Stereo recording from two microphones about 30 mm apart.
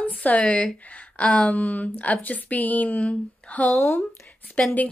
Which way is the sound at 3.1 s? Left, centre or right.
Left.